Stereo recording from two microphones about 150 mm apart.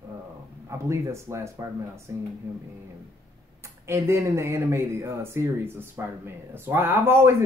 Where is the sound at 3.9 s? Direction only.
20° right (ahead or behind).